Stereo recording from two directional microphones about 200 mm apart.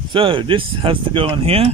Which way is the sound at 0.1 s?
25° right (ahead or behind).